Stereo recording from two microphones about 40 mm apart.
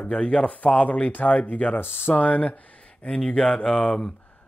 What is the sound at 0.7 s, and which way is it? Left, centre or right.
Speech, left.